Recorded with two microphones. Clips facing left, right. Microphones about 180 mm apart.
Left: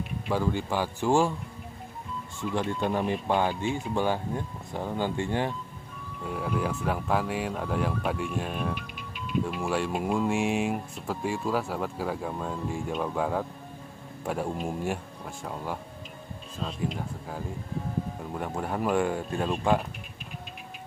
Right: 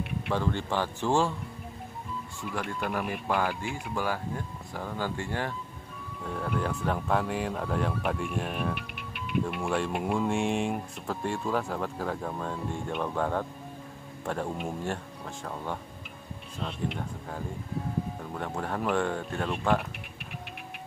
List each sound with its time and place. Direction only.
0.3 s speech: 10° left (ahead or behind)
2.5 s speech: 25° left (ahead or behind)
6.2 s speech: 5° left (ahead or behind)
18.3 s speech: 10° left (ahead or behind)